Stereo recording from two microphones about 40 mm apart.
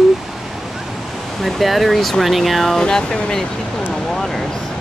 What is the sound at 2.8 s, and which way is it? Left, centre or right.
Speech, centre.